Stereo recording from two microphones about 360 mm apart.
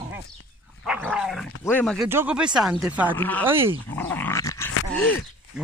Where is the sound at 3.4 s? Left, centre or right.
Centre.